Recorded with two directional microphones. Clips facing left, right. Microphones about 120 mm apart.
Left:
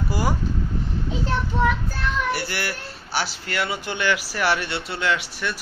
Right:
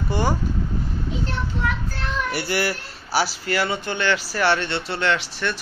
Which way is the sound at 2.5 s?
5° right (ahead or behind).